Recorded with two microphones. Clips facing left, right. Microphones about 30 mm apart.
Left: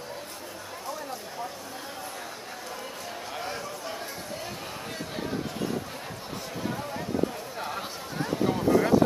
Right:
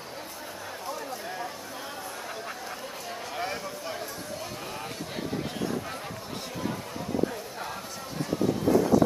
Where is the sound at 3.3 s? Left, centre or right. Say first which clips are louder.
Right 2 dB; centre.